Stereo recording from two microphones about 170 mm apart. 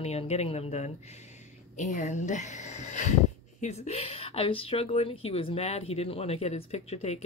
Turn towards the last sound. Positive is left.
turn(degrees=40)  # may be behind; listen again after turning